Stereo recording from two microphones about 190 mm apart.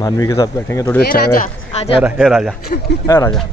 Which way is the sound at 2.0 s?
5° right (ahead or behind).